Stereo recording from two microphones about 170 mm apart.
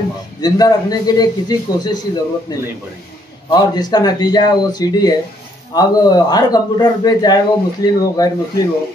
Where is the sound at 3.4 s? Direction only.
25° left (ahead or behind).